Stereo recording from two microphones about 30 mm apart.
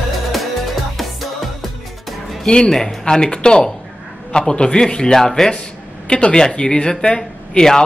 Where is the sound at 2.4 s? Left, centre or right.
Left.